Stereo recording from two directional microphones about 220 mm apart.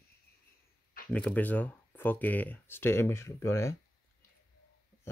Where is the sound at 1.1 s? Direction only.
5° left (ahead or behind).